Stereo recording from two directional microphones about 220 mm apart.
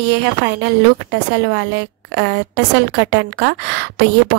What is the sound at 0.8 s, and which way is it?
A woman's voice, 50° right (ahead or behind).